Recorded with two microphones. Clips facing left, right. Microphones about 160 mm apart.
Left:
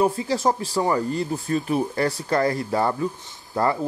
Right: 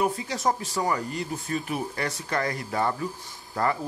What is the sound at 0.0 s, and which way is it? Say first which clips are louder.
Speech: left 5 dB; 30° left (ahead or behind).